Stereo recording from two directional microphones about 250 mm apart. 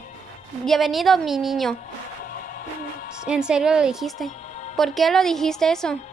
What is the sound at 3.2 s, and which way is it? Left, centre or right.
A woman's voice, centre.